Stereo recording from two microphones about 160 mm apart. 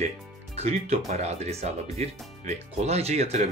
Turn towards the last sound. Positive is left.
turn(degrees=-45)  # may be behind; listen again after turning